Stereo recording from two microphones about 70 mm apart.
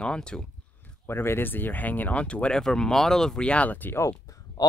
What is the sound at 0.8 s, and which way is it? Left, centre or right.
Speech, left.